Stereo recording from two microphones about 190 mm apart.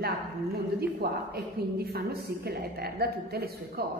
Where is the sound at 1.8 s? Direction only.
55° right (ahead or behind).